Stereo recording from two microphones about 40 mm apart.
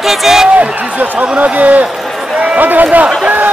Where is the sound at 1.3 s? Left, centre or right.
Right.